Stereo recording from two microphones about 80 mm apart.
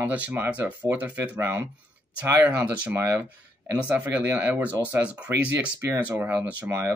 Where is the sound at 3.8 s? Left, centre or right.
Centre.